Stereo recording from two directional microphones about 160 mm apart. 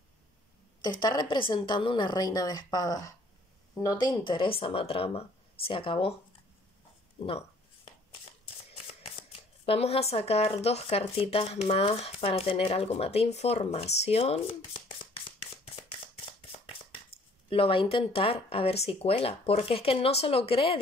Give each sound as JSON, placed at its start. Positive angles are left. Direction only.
{"t": 0.8, "sound": "a woman's voice", "side_deg": 30}
{"t": 7.2, "sound": "speech", "side_deg": 35}
{"t": 8.7, "sound": "speech", "side_deg": 40}
{"t": 16.5, "sound": "a sound", "side_deg": 35}
{"t": 17.5, "sound": "speech", "side_deg": 35}